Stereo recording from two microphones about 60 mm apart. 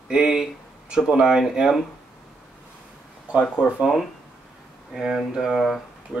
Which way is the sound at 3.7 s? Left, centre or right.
Centre.